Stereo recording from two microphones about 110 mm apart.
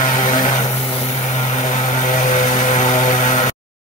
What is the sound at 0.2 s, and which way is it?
Vehicle, 90° left.